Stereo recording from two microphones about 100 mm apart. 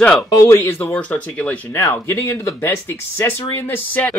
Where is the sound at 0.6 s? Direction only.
20° left (ahead or behind).